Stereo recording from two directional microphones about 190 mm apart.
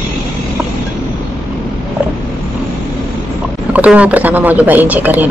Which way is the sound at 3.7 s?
5° right (ahead or behind).